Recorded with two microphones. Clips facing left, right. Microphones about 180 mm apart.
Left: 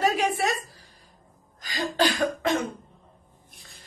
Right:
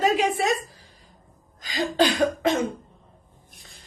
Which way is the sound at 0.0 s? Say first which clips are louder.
Right 2 dB; 15° right (ahead or behind).